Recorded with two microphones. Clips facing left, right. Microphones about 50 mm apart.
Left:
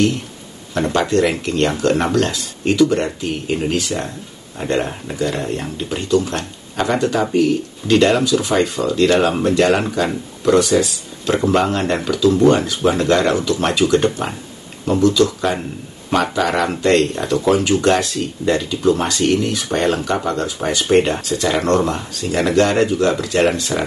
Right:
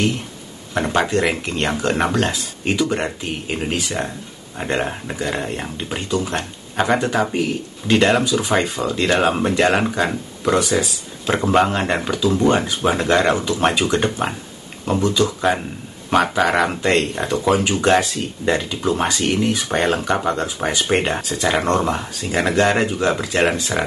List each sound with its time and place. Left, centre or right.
0.7 s speech: centre